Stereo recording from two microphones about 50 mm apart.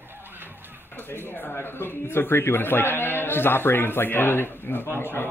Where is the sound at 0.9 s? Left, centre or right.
Left.